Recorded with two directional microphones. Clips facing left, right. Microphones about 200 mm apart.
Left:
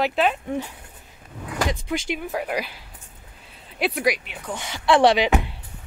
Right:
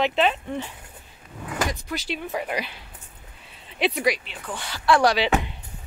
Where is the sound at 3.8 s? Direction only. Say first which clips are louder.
Even; 5° left (ahead or behind); by 5.2 s 25° left (ahead or behind).